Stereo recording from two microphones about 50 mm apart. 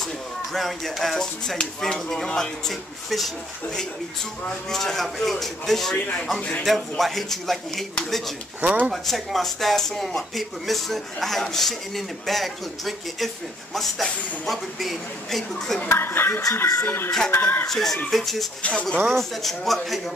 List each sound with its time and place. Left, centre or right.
0.5 s speech: centre
4.6 s speech: centre
8.6 s speech: right
8.9 s speech: centre
14.4 s speech: centre
15.9 s speech: left
17.6 s speech: centre
18.6 s speech: left
19.1 s speech: centre